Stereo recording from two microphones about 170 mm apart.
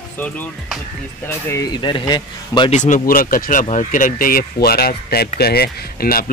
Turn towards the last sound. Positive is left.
turn(degrees=60)  # may be behind; listen again after turning